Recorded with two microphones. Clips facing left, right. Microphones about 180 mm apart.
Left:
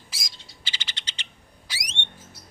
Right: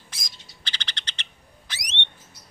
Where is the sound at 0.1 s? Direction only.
5° left (ahead or behind).